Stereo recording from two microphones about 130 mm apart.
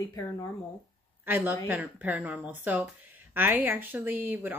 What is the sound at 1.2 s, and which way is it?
Speech, 15° right (ahead or behind).